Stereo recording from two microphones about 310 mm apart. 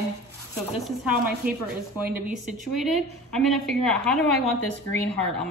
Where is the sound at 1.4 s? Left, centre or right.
Right.